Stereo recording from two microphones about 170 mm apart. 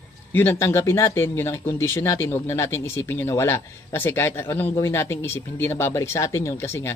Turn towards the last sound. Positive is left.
turn(degrees=15)  # may be behind; listen again after turning